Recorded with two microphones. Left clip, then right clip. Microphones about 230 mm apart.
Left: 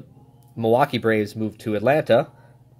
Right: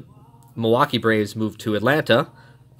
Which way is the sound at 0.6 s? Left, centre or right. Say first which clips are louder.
Even; centre.